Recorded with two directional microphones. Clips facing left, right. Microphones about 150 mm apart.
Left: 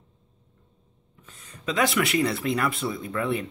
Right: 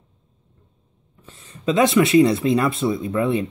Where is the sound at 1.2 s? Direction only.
25° right (ahead or behind).